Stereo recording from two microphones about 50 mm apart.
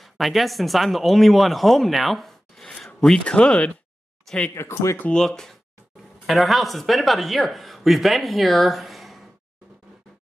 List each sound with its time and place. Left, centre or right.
0.0 s speech: centre
3.3 s speech: centre
4.6 s speech: left
5.1 s speech: centre